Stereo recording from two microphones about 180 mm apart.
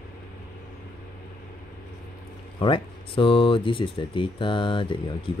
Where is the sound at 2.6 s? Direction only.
30° left (ahead or behind).